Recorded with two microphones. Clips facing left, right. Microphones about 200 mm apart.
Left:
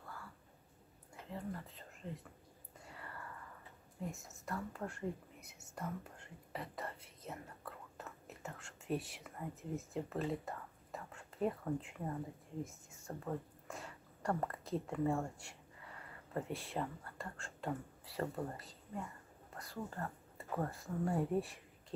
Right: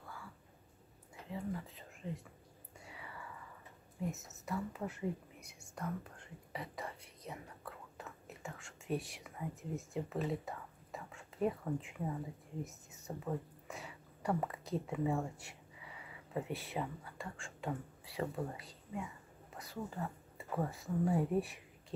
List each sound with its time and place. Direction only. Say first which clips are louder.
0.0 s a sound: right 1 dB; centre (ahead or behind)
1.3 s speech: right 3 dB; 5° right (ahead or behind)
2.9 s whispering: even; 5° right (ahead or behind)
4.5 s speech: right 3 dB; 5° right (ahead or behind)
6.2 s whispering: even; centre (ahead or behind)
13.0 s speech: right 2 dB; 5° right (ahead or behind)